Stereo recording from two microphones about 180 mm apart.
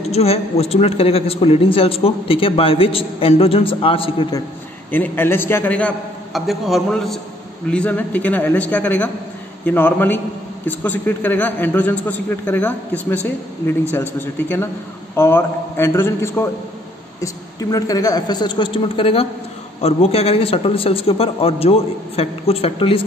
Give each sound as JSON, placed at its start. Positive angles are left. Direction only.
{"t": 0.1, "sound": "a man's voice", "side_deg": 35}
{"t": 4.9, "sound": "a man's voice", "side_deg": 10}
{"t": 13.9, "sound": "a man's voice", "side_deg": 15}